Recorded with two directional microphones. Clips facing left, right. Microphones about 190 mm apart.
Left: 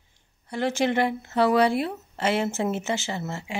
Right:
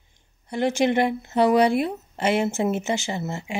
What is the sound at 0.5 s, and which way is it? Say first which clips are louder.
A woman's voice: right 3 dB; 15° right (ahead or behind).